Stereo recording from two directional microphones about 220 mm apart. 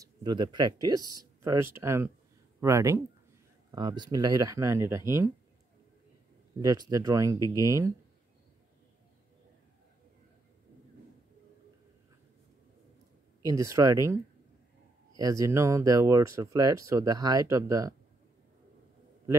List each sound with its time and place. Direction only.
0.0 s speech: 20° right (ahead or behind)
6.6 s speech: 15° right (ahead or behind)
13.4 s speech: 15° right (ahead or behind)
15.1 s speech: 15° right (ahead or behind)